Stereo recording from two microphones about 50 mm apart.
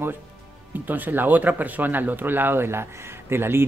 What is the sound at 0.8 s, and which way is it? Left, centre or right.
Speech, right.